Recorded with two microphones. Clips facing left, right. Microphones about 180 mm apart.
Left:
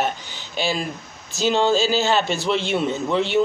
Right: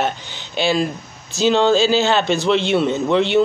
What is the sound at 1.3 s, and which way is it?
Speech, 10° left (ahead or behind).